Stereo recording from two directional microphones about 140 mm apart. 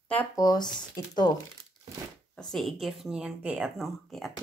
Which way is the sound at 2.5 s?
Centre (ahead or behind).